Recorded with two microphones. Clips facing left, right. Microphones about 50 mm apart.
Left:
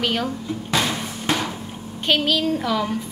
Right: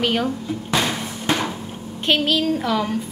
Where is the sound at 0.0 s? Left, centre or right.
Centre.